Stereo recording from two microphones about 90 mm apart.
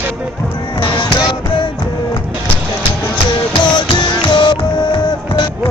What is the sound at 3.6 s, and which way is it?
Music, 55° left (ahead or behind).